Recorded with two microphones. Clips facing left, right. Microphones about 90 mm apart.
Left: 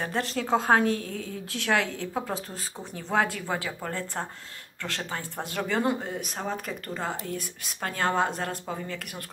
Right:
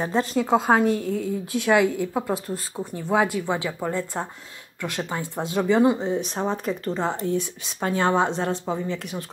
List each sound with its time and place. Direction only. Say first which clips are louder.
0.0 s speech: right 6 dB; 20° right (ahead or behind)